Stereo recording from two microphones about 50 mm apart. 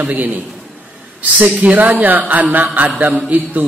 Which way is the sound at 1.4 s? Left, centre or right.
Right.